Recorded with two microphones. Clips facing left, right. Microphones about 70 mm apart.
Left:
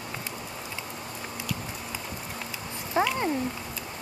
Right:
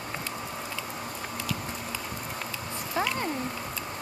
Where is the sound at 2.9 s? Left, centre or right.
Left.